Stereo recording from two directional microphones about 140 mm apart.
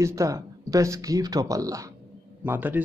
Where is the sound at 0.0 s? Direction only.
20° right (ahead or behind).